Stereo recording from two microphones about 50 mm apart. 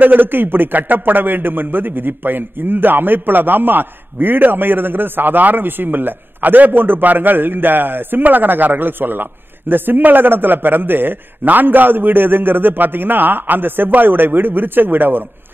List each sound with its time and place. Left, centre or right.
0.0 s a man's voice: right